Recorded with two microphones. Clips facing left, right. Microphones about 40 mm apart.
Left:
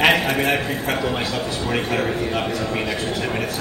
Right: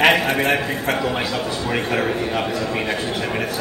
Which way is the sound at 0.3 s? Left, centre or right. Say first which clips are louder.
Right 1 dB; right.